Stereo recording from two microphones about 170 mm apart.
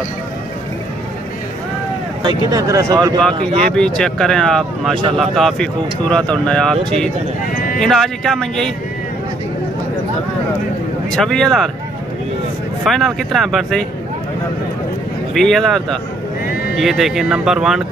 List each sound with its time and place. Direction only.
2.2 s speech: 20° right (ahead or behind)
3.2 s speech: 5° left (ahead or behind)
7.8 s speech: centre (ahead or behind)
11.1 s speech: 5° left (ahead or behind)
12.8 s speech: centre (ahead or behind)
15.3 s speech: centre (ahead or behind)